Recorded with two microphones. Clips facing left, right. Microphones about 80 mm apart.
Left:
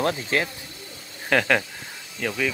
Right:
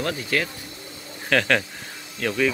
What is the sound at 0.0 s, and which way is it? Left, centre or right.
Speech, left.